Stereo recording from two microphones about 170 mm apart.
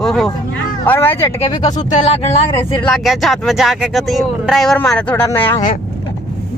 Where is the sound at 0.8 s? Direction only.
10° left (ahead or behind).